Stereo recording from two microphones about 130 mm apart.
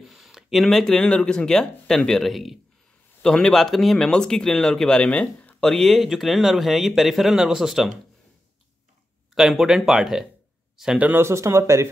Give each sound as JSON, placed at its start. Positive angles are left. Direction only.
{"t": 0.0, "sound": "speech", "side_deg": 0}
{"t": 9.3, "sound": "speech", "side_deg": 0}